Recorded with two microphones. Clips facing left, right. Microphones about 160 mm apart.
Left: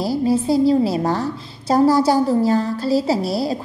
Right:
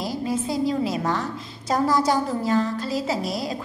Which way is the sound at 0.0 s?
30° left (ahead or behind).